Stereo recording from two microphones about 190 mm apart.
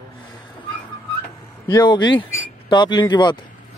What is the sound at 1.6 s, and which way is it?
Speech, 20° left (ahead or behind).